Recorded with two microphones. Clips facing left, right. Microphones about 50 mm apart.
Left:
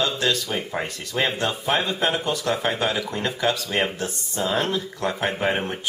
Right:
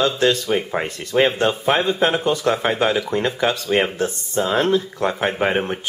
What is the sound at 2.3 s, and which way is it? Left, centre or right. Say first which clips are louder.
Speech: right 5 dB; right.